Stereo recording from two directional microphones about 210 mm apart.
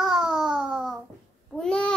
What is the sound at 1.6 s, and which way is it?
Babbling, 5° left (ahead or behind).